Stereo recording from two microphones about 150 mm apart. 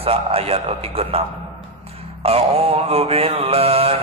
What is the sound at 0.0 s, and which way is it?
A man's voice, 40° right (ahead or behind).